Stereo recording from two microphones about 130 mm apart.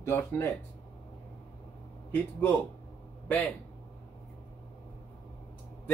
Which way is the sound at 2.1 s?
15° left (ahead or behind).